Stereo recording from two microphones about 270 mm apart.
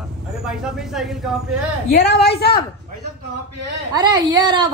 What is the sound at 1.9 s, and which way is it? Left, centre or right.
Speech, left.